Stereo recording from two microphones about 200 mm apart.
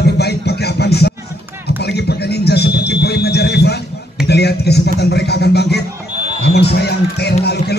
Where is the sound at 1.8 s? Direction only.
55° left (ahead or behind).